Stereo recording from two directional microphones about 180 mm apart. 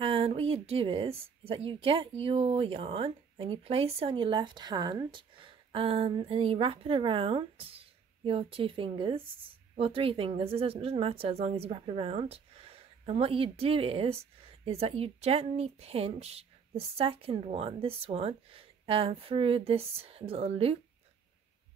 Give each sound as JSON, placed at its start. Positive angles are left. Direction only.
{"t": 0.0, "sound": "a woman's voice", "side_deg": -30}